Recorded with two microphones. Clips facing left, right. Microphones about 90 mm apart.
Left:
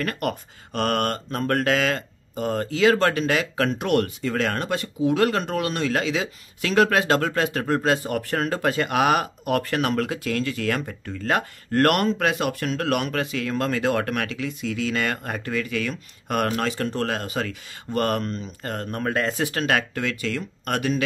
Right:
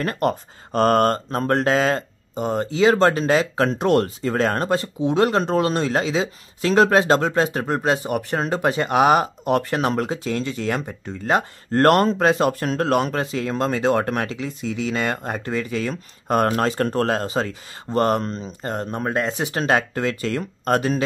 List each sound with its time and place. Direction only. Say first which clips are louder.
0.0 s speech: right 5 dB; 30° right (ahead or behind)
19.6 s speech: right 5 dB; 30° right (ahead or behind)